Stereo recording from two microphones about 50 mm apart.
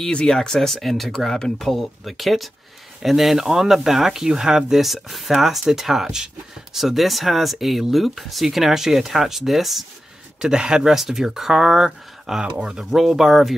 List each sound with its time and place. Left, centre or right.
0.0 s speech: centre
10.4 s speech: centre
12.5 s speech: centre
12.9 s speech: centre